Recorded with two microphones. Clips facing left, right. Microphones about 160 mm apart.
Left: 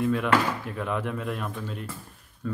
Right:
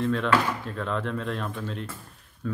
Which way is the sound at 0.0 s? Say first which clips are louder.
Even; 10° left (ahead or behind).